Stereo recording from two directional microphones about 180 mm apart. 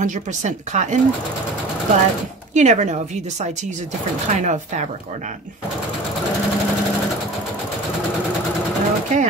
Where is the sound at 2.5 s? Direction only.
40° right (ahead or behind).